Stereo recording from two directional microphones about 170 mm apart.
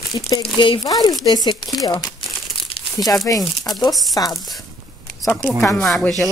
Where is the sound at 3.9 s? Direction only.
Centre (ahead or behind).